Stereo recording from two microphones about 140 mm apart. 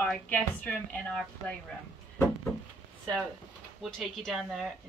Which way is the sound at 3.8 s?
Centre (ahead or behind).